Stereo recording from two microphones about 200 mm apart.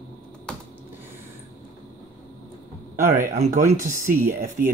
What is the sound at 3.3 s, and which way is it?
Speech, 35° right (ahead or behind).